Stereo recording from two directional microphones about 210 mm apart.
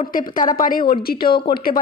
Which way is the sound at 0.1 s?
40° left (ahead or behind).